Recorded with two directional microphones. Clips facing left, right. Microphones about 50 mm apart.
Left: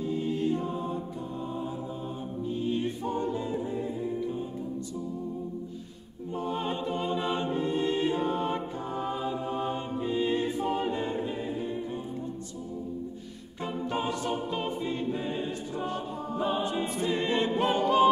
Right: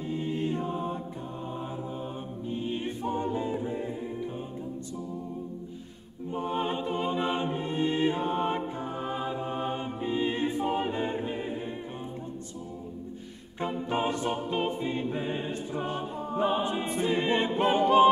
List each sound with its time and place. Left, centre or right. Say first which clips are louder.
0.1 s choir: left 1 dB; right
2.5 s choir: left 2 dB; right
6.3 s music: right 1 dB; right
13.6 s music: right 2 dB; right
17.2 s a capella: even; right